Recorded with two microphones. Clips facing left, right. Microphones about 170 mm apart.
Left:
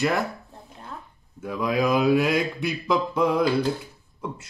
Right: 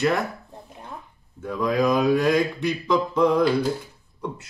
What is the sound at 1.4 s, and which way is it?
Speech, 5° left (ahead or behind).